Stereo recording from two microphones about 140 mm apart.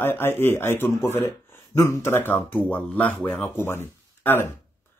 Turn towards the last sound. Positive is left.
turn(degrees=15)  # may be behind; listen again after turning